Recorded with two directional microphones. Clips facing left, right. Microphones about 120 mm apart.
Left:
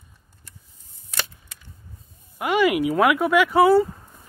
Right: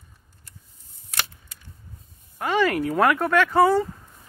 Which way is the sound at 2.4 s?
10° left (ahead or behind).